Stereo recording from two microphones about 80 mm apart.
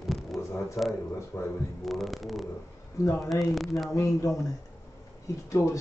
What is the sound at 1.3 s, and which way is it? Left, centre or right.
Speech, left.